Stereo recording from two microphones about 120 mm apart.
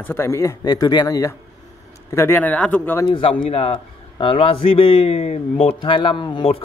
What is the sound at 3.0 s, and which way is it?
A man's voice, 45° left (ahead or behind).